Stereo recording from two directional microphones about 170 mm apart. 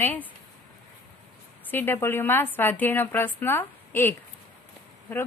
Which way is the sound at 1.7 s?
10° left (ahead or behind).